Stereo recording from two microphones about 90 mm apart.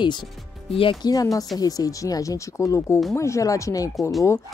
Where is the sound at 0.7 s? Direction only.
75° left (ahead or behind).